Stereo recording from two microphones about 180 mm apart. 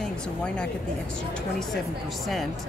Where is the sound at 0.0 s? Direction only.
5° left (ahead or behind).